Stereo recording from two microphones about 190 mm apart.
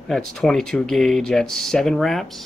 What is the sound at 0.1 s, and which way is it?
Speech, 5° left (ahead or behind).